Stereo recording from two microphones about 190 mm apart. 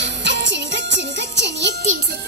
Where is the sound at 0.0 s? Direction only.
70° right (ahead or behind).